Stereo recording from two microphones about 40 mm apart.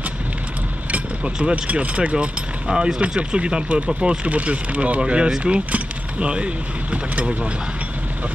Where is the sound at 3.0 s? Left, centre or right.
Right.